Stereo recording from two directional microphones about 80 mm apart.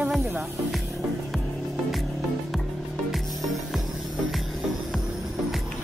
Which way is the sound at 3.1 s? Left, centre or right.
Centre.